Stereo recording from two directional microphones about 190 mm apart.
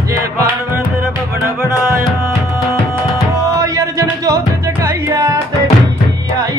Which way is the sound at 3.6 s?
15° right (ahead or behind).